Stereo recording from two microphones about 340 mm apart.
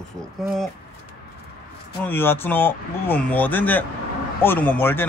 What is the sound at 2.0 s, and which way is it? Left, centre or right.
Speech, centre.